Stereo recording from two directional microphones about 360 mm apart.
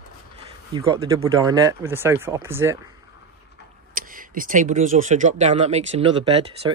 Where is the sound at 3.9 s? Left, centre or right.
Right.